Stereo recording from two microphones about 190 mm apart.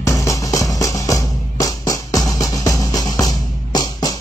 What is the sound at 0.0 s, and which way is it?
Music, 15° left (ahead or behind).